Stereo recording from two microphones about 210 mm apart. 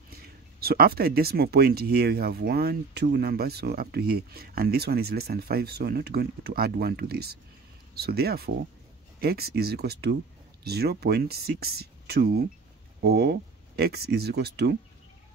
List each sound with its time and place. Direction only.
0.1 s speech: 45° right (ahead or behind)